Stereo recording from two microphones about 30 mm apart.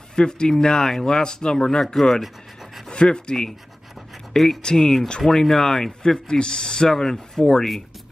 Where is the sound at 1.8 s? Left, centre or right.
Centre.